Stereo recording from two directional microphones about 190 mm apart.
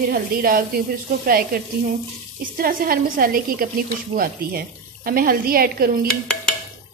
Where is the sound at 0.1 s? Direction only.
50° right (ahead or behind).